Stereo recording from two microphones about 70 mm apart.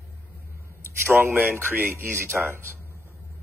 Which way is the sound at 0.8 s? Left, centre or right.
Right.